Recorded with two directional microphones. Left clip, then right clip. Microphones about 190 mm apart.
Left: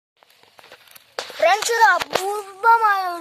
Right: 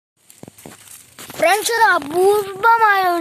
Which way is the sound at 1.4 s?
5° left (ahead or behind).